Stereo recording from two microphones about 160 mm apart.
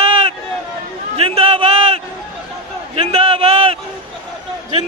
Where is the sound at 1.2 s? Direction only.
35° right (ahead or behind).